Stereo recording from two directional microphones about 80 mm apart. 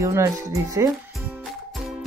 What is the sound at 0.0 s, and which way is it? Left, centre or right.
Speech, right.